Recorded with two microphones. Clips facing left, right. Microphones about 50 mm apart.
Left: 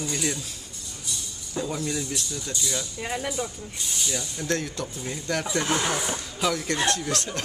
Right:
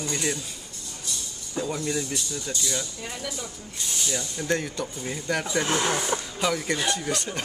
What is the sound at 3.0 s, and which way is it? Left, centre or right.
Speech, left.